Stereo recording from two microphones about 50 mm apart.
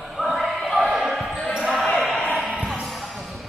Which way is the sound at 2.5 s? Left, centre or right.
Centre.